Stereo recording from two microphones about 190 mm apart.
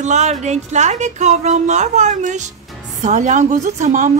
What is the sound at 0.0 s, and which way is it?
A woman's voice, 40° right (ahead or behind).